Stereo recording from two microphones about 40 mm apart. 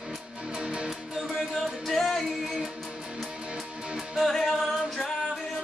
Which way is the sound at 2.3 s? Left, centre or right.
Centre.